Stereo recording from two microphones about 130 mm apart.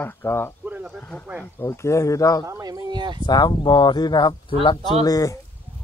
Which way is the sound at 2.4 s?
25° right (ahead or behind).